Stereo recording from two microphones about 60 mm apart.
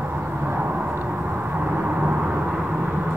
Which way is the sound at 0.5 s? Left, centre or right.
Right.